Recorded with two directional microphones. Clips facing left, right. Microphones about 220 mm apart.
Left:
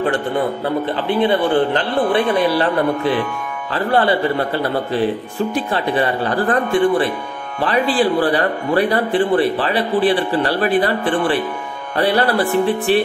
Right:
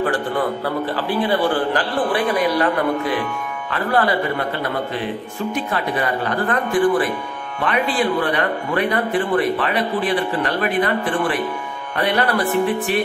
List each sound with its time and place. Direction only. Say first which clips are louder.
0.7 s a man's voice: left 3 dB; 25° left (ahead or behind)
5.5 s a man's voice: left 2 dB; 30° left (ahead or behind)